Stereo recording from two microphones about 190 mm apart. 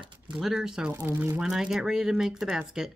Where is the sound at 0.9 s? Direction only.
15° right (ahead or behind).